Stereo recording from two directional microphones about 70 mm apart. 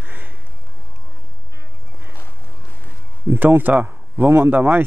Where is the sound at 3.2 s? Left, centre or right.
Right.